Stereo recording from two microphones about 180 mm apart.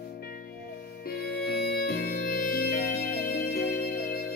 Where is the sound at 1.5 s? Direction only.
65° left (ahead or behind).